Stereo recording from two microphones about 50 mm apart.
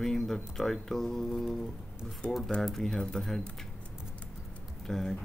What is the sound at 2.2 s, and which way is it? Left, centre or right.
Speech, left.